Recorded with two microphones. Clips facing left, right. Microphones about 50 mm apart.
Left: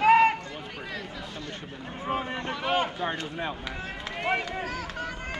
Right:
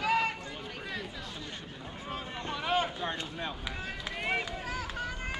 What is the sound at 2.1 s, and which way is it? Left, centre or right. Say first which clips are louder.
Boat: left 8 dB; left.